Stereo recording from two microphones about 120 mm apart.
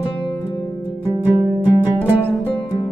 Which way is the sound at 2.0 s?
15° right (ahead or behind).